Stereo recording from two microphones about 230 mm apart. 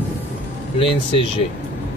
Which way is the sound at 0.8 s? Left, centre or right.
Left.